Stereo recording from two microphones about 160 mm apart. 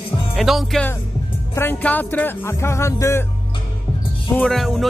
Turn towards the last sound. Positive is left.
turn(degrees=0)  # may be behind; listen again after turning